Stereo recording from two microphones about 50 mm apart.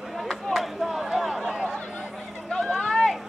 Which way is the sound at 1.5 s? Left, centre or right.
Centre.